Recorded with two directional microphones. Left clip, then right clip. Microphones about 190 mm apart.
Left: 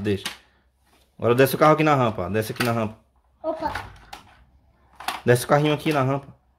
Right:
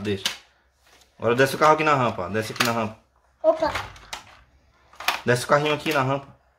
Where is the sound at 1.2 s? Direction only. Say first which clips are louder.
Left 1 dB; 40° left (ahead or behind).